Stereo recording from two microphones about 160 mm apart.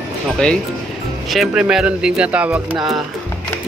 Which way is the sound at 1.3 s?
5° right (ahead or behind).